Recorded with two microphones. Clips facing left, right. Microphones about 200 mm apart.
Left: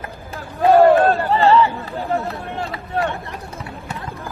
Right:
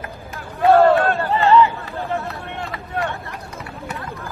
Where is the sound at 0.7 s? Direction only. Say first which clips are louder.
Left 2 dB; 15° left (ahead or behind).